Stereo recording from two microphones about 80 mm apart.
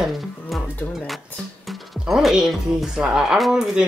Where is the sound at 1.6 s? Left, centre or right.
Centre.